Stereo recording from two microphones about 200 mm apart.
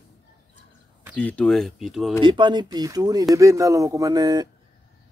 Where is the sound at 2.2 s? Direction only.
25° right (ahead or behind).